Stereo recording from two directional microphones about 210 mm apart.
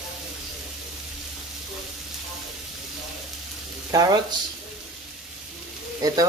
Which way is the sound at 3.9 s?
20° right (ahead or behind).